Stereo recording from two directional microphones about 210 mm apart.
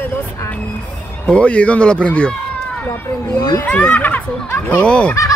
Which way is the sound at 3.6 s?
10° left (ahead or behind).